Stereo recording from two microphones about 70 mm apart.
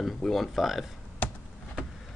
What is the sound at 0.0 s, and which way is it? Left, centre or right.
Speech, centre.